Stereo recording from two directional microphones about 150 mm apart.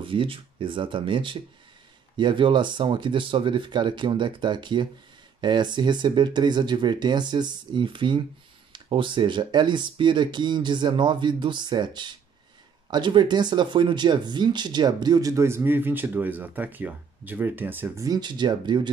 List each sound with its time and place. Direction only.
0.0 s speech: 35° right (ahead or behind)